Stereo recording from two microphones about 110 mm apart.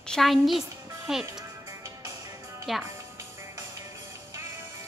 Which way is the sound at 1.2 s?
30° right (ahead or behind).